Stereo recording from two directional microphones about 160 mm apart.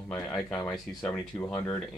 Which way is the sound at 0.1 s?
5° left (ahead or behind).